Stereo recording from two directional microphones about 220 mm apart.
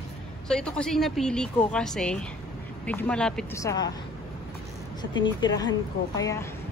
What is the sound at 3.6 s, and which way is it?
Speech, 20° left (ahead or behind).